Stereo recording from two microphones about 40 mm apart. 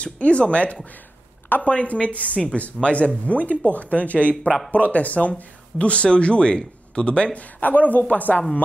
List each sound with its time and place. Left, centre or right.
0.0 s speech: left
7.6 s speech: left